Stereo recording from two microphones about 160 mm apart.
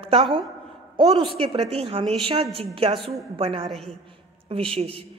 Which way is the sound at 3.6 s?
5° left (ahead or behind).